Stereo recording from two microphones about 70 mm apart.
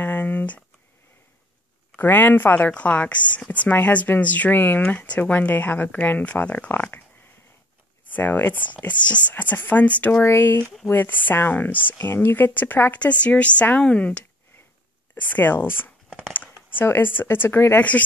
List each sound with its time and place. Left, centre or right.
0.0 s a sound: left
2.0 s speech: left
8.1 s speech: left
10.2 s speech: left
16.1 s a sound: centre
16.3 s speech: left